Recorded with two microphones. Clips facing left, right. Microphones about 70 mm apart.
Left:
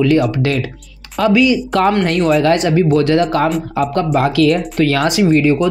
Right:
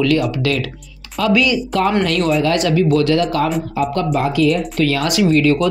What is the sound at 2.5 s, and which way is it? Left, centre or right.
Speech, left.